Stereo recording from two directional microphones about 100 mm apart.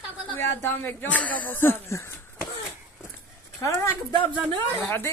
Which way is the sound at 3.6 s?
30° left (ahead or behind).